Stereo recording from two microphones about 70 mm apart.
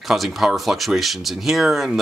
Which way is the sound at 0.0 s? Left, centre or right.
Centre.